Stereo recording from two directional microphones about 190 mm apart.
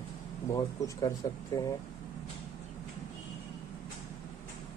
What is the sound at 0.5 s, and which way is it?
Speech, 20° left (ahead or behind).